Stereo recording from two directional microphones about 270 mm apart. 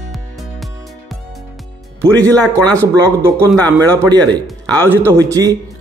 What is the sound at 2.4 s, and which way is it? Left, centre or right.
A man's voice, centre.